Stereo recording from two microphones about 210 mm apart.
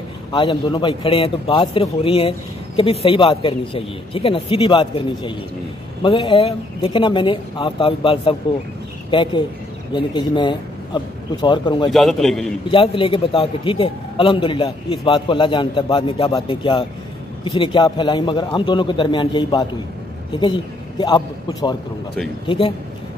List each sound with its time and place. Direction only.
0.3 s a man's voice: 20° left (ahead or behind)
11.9 s a man's voice: centre (ahead or behind)
12.7 s a man's voice: 25° left (ahead or behind)